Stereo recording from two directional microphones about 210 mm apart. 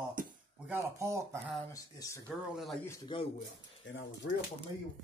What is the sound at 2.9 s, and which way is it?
Speech, 20° left (ahead or behind).